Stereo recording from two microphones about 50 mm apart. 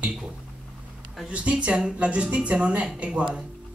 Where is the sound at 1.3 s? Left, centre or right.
Right.